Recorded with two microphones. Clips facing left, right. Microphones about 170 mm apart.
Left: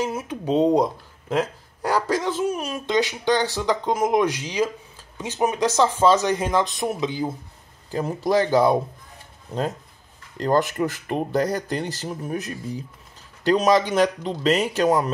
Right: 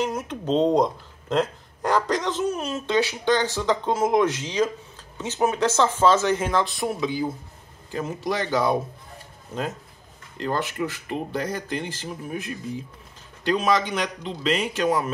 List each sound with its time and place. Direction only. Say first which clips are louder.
0.0 s speech: even; 10° left (ahead or behind)
7.9 s speech: left 6 dB; 35° left (ahead or behind)